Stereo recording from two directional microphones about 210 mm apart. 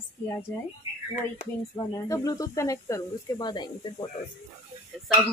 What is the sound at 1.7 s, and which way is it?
Speech, 15° left (ahead or behind).